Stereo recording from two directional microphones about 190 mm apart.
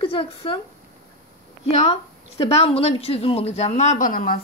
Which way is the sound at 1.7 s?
35° left (ahead or behind).